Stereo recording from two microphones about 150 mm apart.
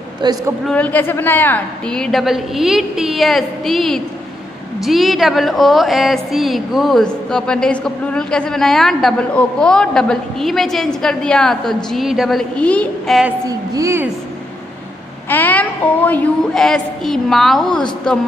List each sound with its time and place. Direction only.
0.2 s a woman's voice: 30° right (ahead or behind)
0.7 s a woman's voice: 10° left (ahead or behind)
13.5 s a woman's voice: 20° right (ahead or behind)
15.2 s a woman's voice: 10° left (ahead or behind)